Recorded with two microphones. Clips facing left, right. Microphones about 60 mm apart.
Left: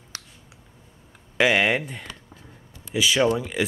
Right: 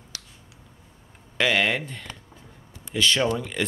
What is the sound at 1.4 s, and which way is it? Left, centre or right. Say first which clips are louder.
Speech: left 3 dB; centre.